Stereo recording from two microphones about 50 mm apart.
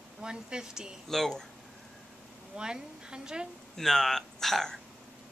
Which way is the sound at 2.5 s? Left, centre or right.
Centre.